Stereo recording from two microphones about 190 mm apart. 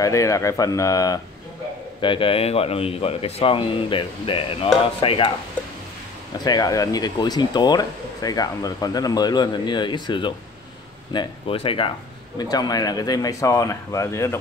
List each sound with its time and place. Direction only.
0.0 s speech: 15° left (ahead or behind)
6.3 s speech: 20° left (ahead or behind)